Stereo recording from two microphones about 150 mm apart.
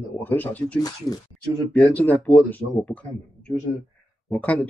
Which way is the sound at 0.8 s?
25° left (ahead or behind).